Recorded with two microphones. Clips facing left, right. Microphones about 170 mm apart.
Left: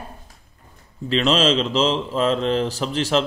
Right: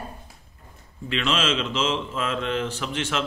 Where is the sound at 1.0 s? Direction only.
35° left (ahead or behind).